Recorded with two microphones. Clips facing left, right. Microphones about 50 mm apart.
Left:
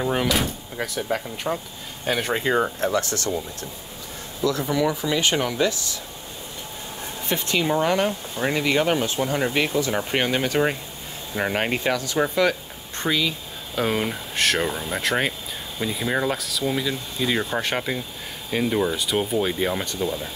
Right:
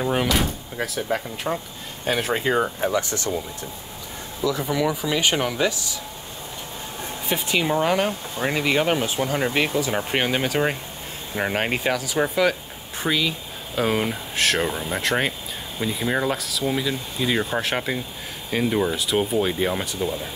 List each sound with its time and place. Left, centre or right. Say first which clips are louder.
0.0 s speech: right 1 dB; centre
2.9 s speech: even; centre
4.4 s speech: left 1 dB; centre
7.2 s speech: even; centre